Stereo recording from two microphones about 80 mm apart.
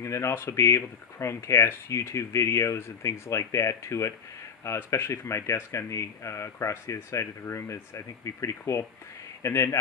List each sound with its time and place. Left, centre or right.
0.0 s speech: left